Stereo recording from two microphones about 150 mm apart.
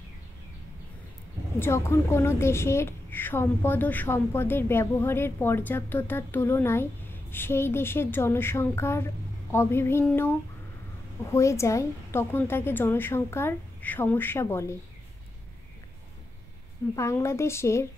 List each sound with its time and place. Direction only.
1.6 s a woman's voice: 20° left (ahead or behind)
11.3 s a woman's voice: 20° left (ahead or behind)
16.9 s speech: 20° left (ahead or behind)